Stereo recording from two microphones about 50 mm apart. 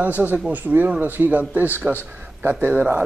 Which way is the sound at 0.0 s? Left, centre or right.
Right.